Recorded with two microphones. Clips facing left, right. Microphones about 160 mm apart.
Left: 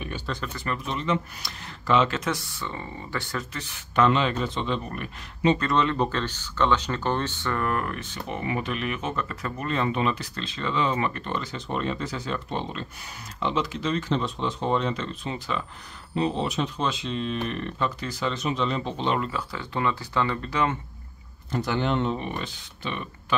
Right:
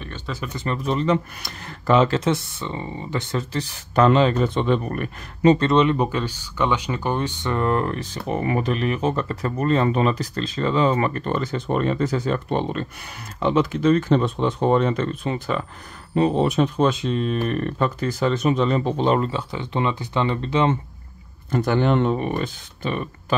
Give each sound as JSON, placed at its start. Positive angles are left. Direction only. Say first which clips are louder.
{"t": 0.5, "sound": "speech", "louder": "right 8 dB", "side_deg": -20}
{"t": 0.8, "sound": "speech", "louder": "right 8 dB", "side_deg": -40}
{"t": 5.6, "sound": "speech", "louder": "right 6 dB", "side_deg": -20}
{"t": 19.3, "sound": "speech", "louder": "right 5 dB", "side_deg": -20}
{"t": 21.5, "sound": "speech", "louder": "right 6 dB", "side_deg": -50}